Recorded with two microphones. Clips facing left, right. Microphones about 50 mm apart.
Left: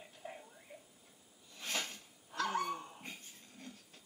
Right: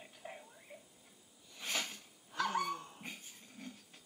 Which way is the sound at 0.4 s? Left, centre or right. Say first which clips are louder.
Even; centre.